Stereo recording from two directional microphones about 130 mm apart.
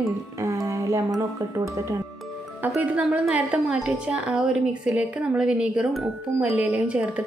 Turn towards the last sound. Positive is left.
turn(degrees=-10)  # may be behind; listen again after turning